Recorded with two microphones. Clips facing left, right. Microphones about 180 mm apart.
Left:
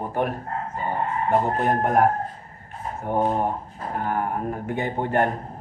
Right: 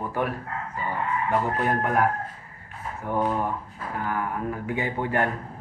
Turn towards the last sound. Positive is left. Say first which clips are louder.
# left 3 dB
turn(degrees=50)  # may be behind; listen again after turning